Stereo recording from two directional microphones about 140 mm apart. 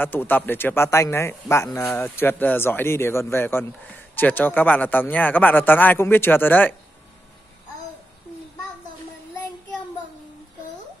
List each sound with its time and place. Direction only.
0.0 s a man's voice: 15° left (ahead or behind)